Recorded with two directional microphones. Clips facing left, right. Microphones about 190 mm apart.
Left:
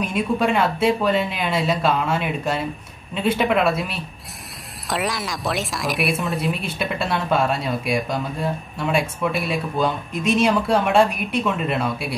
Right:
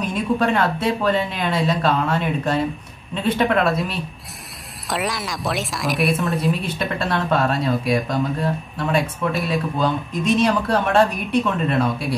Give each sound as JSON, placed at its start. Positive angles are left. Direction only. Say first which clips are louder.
{"t": 0.0, "sound": "a woman's voice", "louder": "right 1 dB", "side_deg": 10}